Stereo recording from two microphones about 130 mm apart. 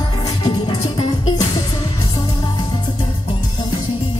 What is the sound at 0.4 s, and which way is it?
Music, 35° left (ahead or behind).